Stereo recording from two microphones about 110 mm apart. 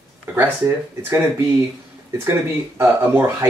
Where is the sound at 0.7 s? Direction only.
25° right (ahead or behind).